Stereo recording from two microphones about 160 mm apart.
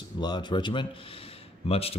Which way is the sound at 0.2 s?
25° left (ahead or behind).